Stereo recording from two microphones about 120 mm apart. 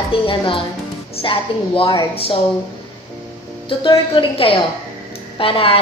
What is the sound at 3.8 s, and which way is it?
Speech, 45° left (ahead or behind).